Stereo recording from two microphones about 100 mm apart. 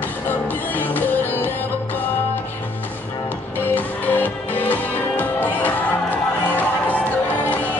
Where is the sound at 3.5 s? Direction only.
20° left (ahead or behind).